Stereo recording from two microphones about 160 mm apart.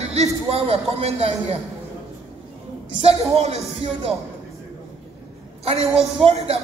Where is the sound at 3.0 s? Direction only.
40° right (ahead or behind).